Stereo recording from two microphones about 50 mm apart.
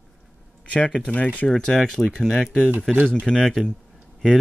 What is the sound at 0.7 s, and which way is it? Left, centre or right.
Speech, left.